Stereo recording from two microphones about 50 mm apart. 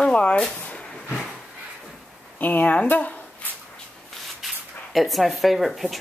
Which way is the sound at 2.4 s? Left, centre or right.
Left.